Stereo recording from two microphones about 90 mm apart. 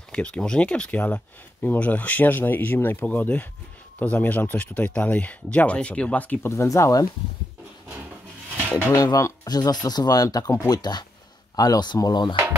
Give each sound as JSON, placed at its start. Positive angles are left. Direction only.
{"t": 0.1, "sound": "speech", "side_deg": 10}
{"t": 6.5, "sound": "speech", "side_deg": 30}
{"t": 8.9, "sound": "speech", "side_deg": 40}
{"t": 10.8, "sound": "speech", "side_deg": 50}